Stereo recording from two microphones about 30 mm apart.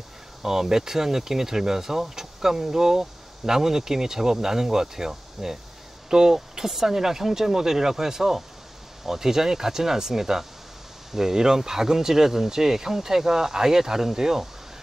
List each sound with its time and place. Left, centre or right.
0.4 s speech: centre